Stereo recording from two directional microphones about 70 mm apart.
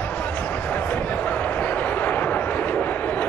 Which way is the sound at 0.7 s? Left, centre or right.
Left.